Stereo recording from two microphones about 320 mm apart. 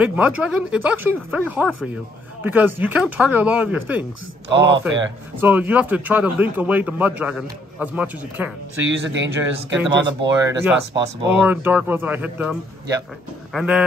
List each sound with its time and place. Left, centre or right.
0.0 s a man's voice: centre
4.5 s speech: right
5.4 s a man's voice: centre
8.8 s speech: right
9.8 s a man's voice: centre